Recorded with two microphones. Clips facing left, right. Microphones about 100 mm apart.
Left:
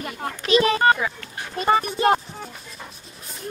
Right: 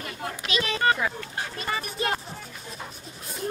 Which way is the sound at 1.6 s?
35° left (ahead or behind).